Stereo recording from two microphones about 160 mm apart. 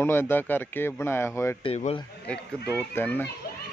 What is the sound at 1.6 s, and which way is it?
Speech, 45° left (ahead or behind).